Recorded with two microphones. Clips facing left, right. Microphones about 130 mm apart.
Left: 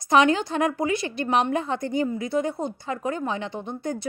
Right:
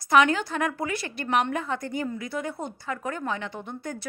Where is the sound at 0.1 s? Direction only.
20° left (ahead or behind).